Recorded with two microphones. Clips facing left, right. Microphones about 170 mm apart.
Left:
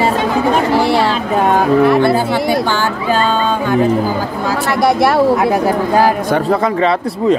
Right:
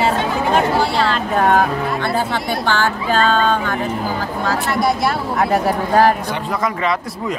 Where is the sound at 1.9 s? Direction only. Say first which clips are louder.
Left 8 dB; 10° left (ahead or behind).